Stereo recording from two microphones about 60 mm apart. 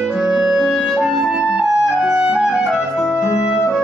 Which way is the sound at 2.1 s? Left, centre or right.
Centre.